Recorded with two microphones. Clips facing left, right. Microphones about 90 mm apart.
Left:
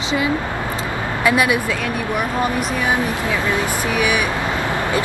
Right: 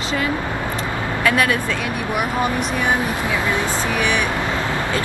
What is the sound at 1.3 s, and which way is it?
Speech, 15° left (ahead or behind).